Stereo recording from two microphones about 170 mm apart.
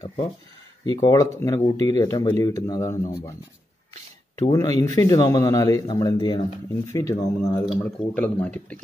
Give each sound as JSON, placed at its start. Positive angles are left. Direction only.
{"t": 0.8, "sound": "speech", "side_deg": 20}
{"t": 4.4, "sound": "speech", "side_deg": 20}